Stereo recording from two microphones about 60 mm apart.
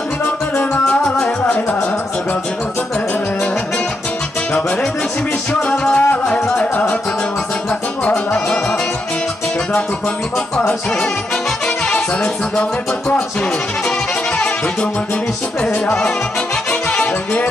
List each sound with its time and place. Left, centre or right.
0.2 s music: left
5.5 s music: centre
15.6 s music: centre